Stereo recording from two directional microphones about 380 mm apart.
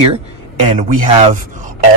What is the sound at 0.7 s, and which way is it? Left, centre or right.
Speech, centre.